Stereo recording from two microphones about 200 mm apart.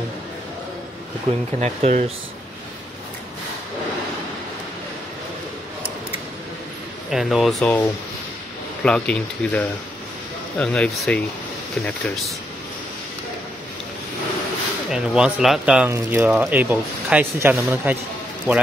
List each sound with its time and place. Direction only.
1.3 s speech: 30° right (ahead or behind)
7.1 s speech: centre (ahead or behind)
8.8 s speech: 5° left (ahead or behind)
14.9 s speech: 5° right (ahead or behind)